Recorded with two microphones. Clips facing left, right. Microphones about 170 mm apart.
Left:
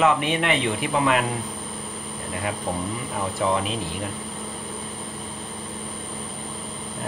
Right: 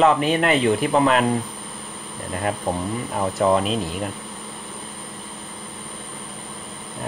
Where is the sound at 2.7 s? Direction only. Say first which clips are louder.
Right 3 dB; 40° right (ahead or behind).